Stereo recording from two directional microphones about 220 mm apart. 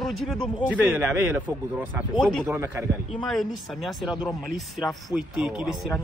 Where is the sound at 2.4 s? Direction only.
10° right (ahead or behind).